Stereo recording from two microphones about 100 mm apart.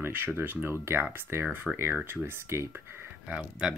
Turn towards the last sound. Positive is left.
turn(degrees=-10)  # may be behind; listen again after turning